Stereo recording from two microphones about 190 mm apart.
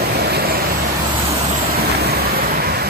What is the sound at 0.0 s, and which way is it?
Vehicle, 55° right (ahead or behind).